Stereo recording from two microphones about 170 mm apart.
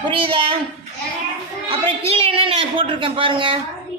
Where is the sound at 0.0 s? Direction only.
30° right (ahead or behind).